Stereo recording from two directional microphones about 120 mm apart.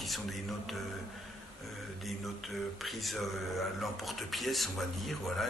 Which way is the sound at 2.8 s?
Centre (ahead or behind).